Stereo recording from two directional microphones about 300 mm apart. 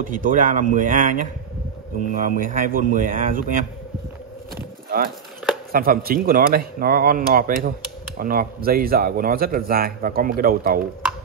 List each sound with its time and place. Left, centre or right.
0.0 s a man's voice: right
2.1 s a man's voice: right
5.7 s a man's voice: right